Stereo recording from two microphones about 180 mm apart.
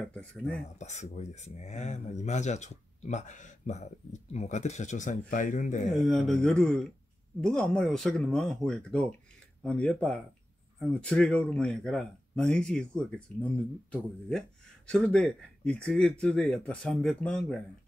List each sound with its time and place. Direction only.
0.1 s speech: 5° left (ahead or behind)
0.7 s speech: 40° left (ahead or behind)
6.0 s speech: centre (ahead or behind)
14.9 s speech: 5° left (ahead or behind)